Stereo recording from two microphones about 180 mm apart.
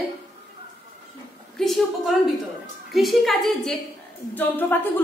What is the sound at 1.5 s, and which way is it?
A woman's voice, centre (ahead or behind).